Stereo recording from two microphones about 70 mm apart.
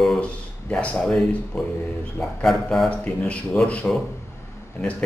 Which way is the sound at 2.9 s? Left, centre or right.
Centre.